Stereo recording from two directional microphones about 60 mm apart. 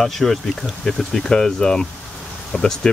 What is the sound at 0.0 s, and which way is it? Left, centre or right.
Speech, centre.